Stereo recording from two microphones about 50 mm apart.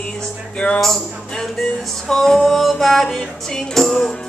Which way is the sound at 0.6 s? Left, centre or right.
Left.